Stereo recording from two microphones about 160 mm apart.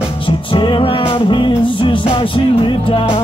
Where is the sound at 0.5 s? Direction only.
30° left (ahead or behind).